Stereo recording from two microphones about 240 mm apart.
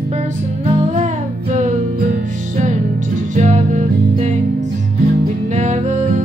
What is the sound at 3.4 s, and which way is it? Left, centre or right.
Music, right.